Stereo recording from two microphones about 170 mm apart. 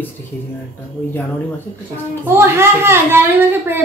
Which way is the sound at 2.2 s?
15° right (ahead or behind).